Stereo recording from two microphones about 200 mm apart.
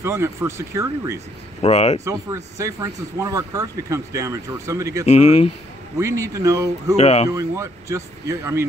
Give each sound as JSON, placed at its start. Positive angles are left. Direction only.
{"t": 0.0, "sound": "speech", "side_deg": -10}
{"t": 1.6, "sound": "speech", "side_deg": 35}
{"t": 2.0, "sound": "speech", "side_deg": -15}
{"t": 5.0, "sound": "speech", "side_deg": 35}
{"t": 5.9, "sound": "speech", "side_deg": -15}
{"t": 7.0, "sound": "speech", "side_deg": 30}
{"t": 7.2, "sound": "speech", "side_deg": -15}